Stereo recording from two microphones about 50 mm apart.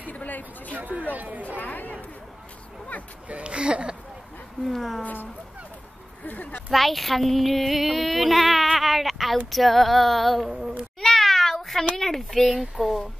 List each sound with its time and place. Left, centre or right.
0.1 s a sound: left
0.7 s speech: right
1.6 s speech: left
3.3 s speech: right
4.6 s female singing: centre
5.0 s speech: left
6.7 s female singing: centre
11.0 s meow: centre
11.9 s female singing: centre